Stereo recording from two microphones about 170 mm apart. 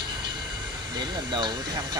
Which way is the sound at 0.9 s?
25° right (ahead or behind).